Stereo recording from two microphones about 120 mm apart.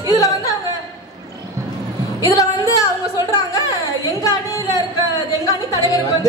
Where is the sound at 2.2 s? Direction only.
30° left (ahead or behind).